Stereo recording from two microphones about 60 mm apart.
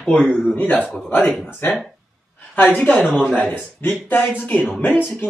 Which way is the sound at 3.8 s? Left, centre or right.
Left.